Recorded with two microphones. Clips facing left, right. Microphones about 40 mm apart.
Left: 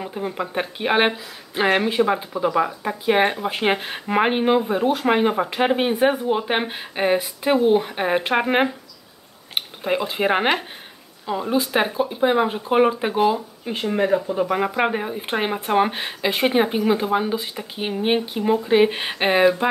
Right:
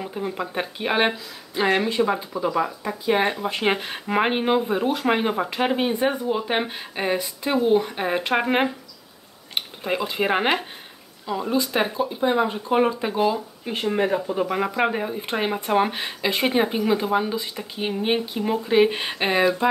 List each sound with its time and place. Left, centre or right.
0.0 s speech: centre
11.5 s speech: left
13.8 s speech: centre